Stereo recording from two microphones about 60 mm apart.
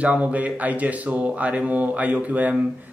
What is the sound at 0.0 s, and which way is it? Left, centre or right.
A man's voice, right.